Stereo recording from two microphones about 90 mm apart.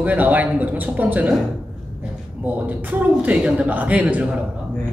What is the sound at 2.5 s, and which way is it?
A man's voice, 15° right (ahead or behind).